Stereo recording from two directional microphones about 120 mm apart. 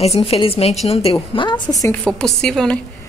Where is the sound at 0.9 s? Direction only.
65° left (ahead or behind).